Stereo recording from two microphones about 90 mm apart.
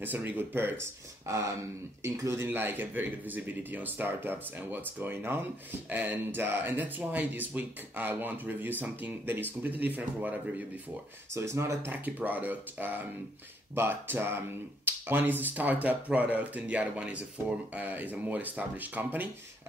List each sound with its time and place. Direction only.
0.0 s speech: 20° right (ahead or behind)
11.3 s speech: 35° right (ahead or behind)
11.9 s speech: 20° right (ahead or behind)